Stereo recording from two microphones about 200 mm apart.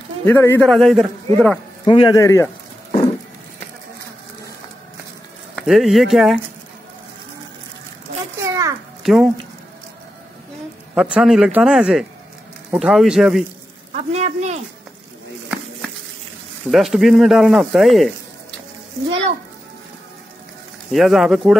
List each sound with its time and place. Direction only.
0.2 s speech: 10° left (ahead or behind)
1.9 s a man's voice: 25° left (ahead or behind)
5.6 s speech: centre (ahead or behind)
8.4 s children playing: 15° right (ahead or behind)
9.0 s speech: centre (ahead or behind)
11.0 s speech: 5° right (ahead or behind)
13.9 s a sound: 35° right (ahead or behind)
16.7 s speech: centre (ahead or behind)
20.9 s speech: centre (ahead or behind)